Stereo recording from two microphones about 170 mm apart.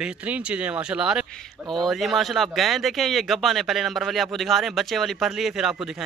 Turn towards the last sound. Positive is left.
turn(degrees=0)  # may be behind; listen again after turning